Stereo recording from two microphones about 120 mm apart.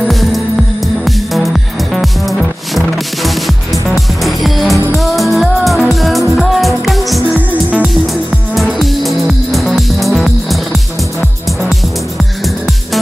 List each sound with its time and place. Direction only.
0.1 s music: centre (ahead or behind)